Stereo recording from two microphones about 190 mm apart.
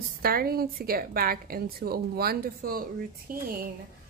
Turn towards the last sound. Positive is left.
turn(degrees=-50)  # may be behind; listen again after turning